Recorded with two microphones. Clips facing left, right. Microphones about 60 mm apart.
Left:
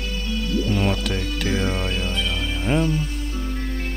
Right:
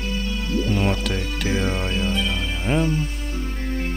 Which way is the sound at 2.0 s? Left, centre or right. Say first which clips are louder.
Right 2 dB; centre.